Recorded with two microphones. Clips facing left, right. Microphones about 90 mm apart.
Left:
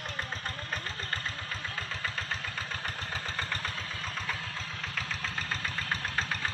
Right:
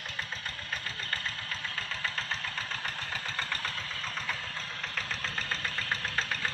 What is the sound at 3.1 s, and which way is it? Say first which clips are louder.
Vehicle: left 1 dB; 20° left (ahead or behind).